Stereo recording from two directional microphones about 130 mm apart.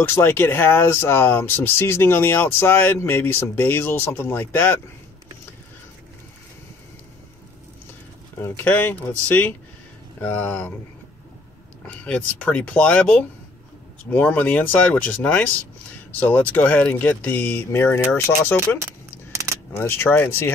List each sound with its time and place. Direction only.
0.0 s speech: 15° left (ahead or behind)
8.4 s speech: 15° left (ahead or behind)
10.2 s speech: 10° left (ahead or behind)
11.9 s speech: 10° left (ahead or behind)
19.3 s keys jangling: 25° right (ahead or behind)
19.7 s speech: 20° left (ahead or behind)